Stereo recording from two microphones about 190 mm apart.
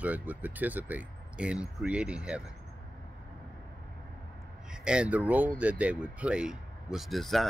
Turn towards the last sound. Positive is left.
turn(degrees=0)  # may be behind; listen again after turning